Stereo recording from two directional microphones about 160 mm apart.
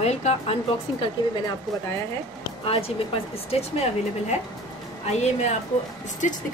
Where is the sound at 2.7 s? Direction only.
35° left (ahead or behind).